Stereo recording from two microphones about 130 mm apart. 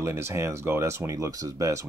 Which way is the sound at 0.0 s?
20° right (ahead or behind).